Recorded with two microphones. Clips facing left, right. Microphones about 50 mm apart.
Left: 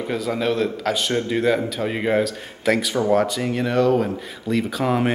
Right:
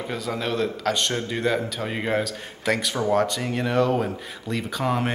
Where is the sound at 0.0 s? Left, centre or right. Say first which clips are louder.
Left 5 dB; centre.